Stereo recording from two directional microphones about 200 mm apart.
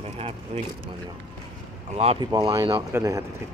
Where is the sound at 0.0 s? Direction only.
30° right (ahead or behind).